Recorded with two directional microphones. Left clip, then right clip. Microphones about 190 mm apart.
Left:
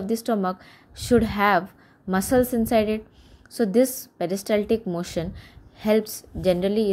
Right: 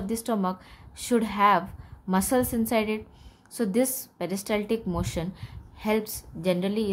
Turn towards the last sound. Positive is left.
turn(degrees=20)  # may be behind; listen again after turning